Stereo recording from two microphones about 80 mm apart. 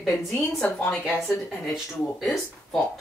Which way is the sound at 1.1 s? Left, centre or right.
Centre.